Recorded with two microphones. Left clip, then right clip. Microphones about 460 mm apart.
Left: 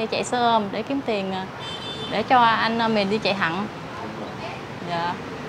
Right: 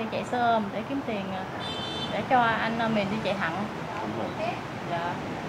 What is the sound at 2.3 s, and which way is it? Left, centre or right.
A woman's voice, left.